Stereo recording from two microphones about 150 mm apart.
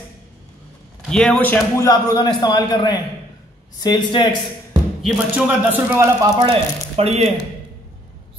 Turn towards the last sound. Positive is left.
turn(degrees=-45)  # may be behind; listen again after turning